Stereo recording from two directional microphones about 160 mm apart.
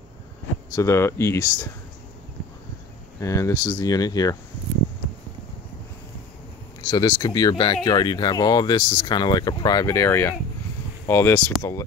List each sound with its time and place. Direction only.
0.7 s speech: 15° left (ahead or behind)
3.2 s speech: 20° left (ahead or behind)
6.9 s speech: 25° left (ahead or behind)